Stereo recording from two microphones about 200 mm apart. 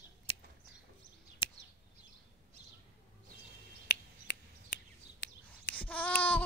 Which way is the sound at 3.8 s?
55° left (ahead or behind).